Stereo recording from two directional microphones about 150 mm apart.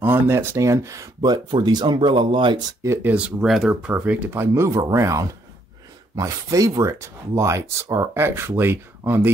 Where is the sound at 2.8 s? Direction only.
15° right (ahead or behind).